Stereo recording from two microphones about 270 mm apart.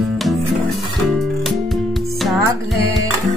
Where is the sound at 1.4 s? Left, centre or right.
Centre.